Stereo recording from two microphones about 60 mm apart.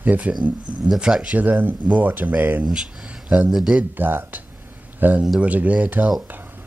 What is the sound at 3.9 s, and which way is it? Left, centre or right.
Speech, right.